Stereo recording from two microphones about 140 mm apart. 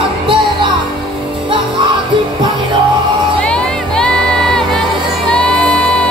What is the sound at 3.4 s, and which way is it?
Music, 5° left (ahead or behind).